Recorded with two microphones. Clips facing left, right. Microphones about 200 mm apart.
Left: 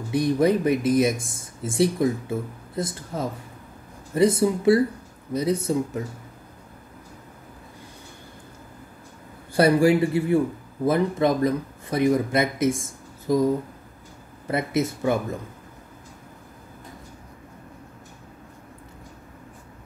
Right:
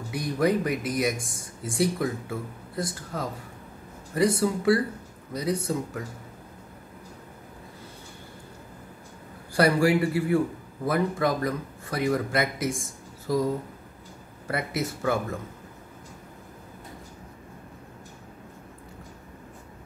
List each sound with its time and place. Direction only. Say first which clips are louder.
0.1 s speech: left 5 dB; 25° left (ahead or behind)
9.5 s speech: left 4 dB; 25° left (ahead or behind)
14.5 s speech: left 5 dB; 20° left (ahead or behind)